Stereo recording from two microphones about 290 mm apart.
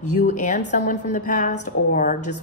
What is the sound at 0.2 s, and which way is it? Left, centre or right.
A woman's voice, left.